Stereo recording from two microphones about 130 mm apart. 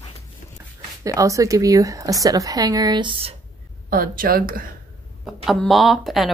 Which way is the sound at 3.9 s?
90° right.